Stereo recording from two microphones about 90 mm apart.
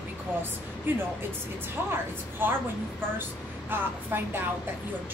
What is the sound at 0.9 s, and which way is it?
Speech, 20° right (ahead or behind).